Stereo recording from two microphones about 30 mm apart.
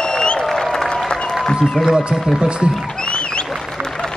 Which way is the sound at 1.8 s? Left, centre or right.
Centre.